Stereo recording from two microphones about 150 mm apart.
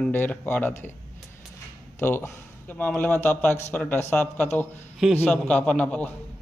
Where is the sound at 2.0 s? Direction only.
15° left (ahead or behind).